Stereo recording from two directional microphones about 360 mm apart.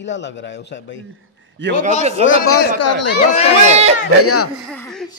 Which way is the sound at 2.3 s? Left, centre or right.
Left.